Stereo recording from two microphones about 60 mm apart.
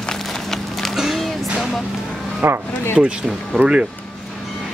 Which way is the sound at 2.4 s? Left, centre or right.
Right.